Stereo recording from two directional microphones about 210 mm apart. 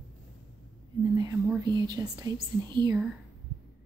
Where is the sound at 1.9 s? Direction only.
20° right (ahead or behind).